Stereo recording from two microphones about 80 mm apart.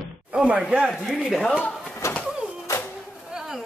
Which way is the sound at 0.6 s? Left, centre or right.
Centre.